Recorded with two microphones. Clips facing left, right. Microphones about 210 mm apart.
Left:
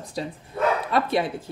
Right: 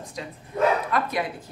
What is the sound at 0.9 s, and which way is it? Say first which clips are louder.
Speech: left 3 dB; 30° left (ahead or behind).